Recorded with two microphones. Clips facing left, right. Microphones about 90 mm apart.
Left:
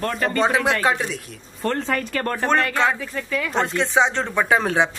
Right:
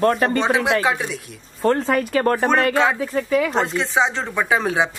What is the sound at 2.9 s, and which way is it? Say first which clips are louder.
Speech: right 7 dB; 25° right (ahead or behind).